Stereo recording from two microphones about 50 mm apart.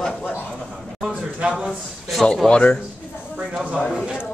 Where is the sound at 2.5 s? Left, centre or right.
Left.